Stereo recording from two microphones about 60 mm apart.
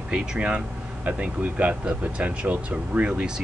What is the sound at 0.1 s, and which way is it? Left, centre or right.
Speech, centre.